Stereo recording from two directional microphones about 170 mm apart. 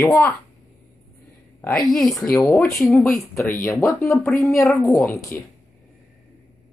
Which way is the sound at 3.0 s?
15° left (ahead or behind).